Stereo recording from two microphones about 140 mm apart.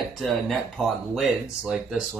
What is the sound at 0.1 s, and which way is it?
Speech, centre (ahead or behind).